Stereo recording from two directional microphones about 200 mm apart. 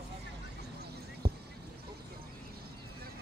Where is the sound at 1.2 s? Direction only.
30° right (ahead or behind).